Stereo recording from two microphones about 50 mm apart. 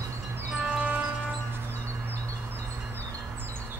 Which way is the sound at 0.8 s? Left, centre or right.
Right.